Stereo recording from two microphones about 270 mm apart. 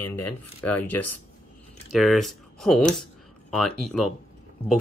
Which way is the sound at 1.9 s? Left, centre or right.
Centre.